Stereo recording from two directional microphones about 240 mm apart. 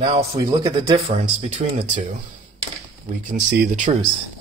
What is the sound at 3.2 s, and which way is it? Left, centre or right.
Speech, right.